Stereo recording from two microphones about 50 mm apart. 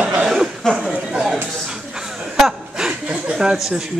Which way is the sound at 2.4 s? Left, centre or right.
Centre.